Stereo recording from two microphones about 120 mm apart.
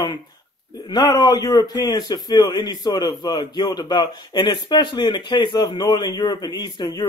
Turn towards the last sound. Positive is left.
turn(degrees=35)  # may be behind; listen again after turning